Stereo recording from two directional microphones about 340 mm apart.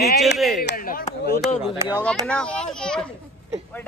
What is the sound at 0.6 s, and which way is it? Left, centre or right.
Speech, left.